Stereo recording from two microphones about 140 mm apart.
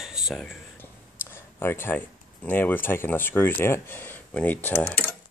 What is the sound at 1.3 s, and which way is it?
Speech, 15° left (ahead or behind).